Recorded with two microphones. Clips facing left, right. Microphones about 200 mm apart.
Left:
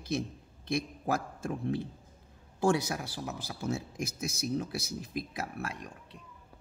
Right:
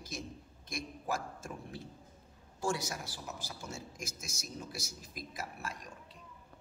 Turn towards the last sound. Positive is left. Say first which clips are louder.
# left 5 dB
turn(degrees=60)  # may be behind; listen again after turning